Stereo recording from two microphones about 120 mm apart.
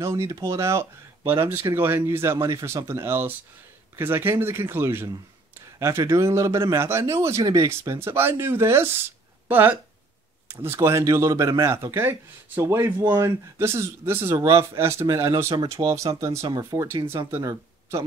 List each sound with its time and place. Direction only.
0.0 s speech: 25° right (ahead or behind)